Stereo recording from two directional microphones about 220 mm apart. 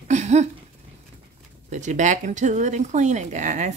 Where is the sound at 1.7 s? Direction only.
35° right (ahead or behind).